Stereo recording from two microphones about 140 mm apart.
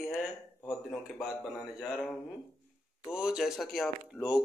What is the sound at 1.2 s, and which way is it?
Speech, 5° right (ahead or behind).